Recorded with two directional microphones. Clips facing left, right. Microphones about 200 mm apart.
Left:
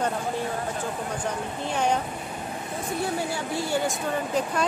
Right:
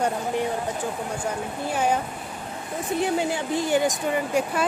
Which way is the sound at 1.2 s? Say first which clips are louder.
Right 1 dB; 5° right (ahead or behind).